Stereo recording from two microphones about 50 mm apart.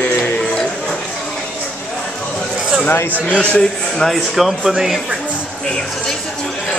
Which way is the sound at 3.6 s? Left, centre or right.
Centre.